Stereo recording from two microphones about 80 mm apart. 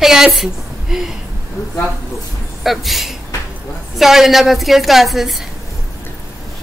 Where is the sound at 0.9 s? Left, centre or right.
Centre.